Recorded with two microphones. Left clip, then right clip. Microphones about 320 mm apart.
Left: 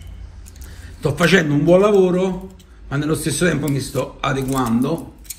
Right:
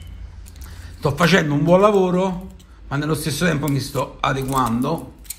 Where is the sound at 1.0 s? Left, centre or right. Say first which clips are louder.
Left 1 dB; centre.